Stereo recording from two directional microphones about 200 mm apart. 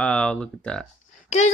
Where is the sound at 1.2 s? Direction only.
35° left (ahead or behind).